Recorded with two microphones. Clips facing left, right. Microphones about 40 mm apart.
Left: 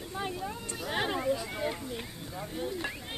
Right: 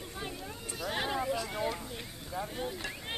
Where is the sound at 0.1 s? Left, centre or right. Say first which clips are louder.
Left 8 dB; centre.